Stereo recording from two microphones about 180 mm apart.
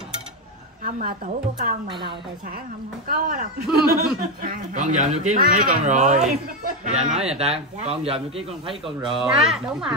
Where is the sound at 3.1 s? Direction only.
50° right (ahead or behind).